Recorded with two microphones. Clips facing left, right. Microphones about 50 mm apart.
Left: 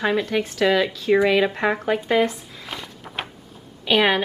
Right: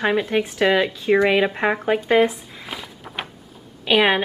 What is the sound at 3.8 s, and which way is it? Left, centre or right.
Speech, centre.